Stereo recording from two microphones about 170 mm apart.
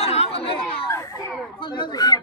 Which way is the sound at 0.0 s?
40° left (ahead or behind).